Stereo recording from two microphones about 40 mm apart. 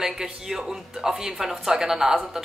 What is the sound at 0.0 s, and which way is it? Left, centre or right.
Speech, centre.